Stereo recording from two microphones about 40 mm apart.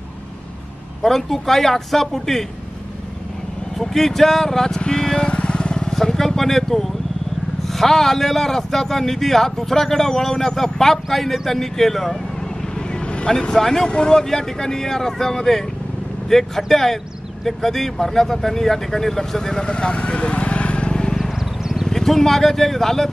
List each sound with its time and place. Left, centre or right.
1.0 s speech: centre
3.7 s speech: centre
5.3 s vehicle: left; by 6.9 s centre
7.6 s speech: centre
12.7 s vehicle: left
13.3 s speech: centre
19.6 s vehicle: left
21.8 s speech: centre